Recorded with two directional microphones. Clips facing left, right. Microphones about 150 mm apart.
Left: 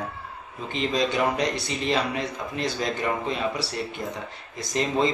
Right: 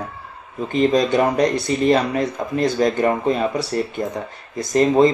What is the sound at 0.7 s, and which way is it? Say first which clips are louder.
Speech: right 8 dB; 45° right (ahead or behind).